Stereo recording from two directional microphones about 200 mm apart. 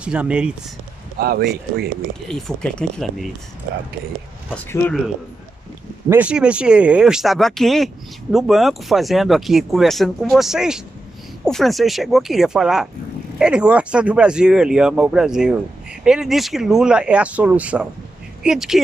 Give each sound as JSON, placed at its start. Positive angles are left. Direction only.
{"t": 0.0, "sound": "speech", "side_deg": -5}
{"t": 1.2, "sound": "speech", "side_deg": -50}
{"t": 2.2, "sound": "speech", "side_deg": 0}
{"t": 4.5, "sound": "speech", "side_deg": 10}
{"t": 6.0, "sound": "speech", "side_deg": -10}